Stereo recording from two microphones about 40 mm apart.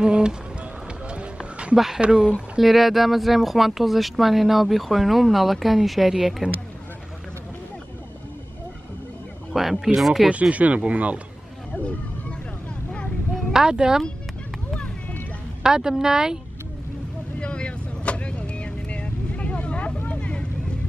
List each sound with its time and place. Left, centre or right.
0.0 s music: right
2.0 s speech: centre
2.6 s speech: centre
9.5 s a sound: centre
9.9 s speech: centre
10.5 s speech: right
11.7 s a sound: left
13.5 s speech: centre
15.6 s a woman's voice: centre
17.4 s vehicle: left